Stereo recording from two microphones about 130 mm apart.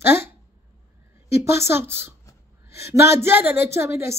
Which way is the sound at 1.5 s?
20° right (ahead or behind).